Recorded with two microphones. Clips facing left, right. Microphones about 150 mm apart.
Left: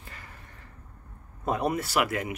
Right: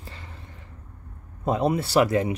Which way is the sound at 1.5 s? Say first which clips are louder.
Right 4 dB; 25° right (ahead or behind).